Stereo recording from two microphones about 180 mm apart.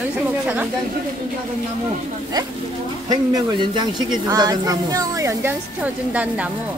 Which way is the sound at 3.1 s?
20° right (ahead or behind).